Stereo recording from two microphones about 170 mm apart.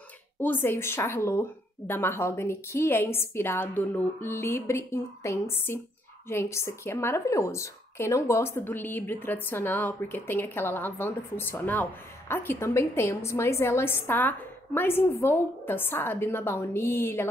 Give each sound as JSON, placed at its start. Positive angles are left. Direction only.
{"t": 0.4, "sound": "speech", "side_deg": 10}